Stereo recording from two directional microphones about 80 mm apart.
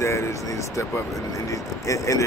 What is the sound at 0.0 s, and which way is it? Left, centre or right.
Speech, left.